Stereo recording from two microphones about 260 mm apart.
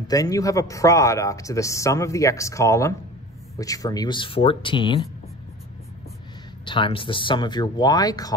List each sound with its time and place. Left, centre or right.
0.1 s speech: centre
6.6 s speech: centre